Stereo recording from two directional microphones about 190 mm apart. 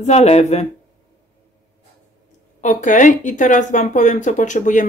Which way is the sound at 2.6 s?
40° left (ahead or behind).